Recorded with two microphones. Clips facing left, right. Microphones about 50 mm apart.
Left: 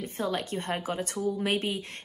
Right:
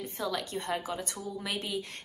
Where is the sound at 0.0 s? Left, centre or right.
Left.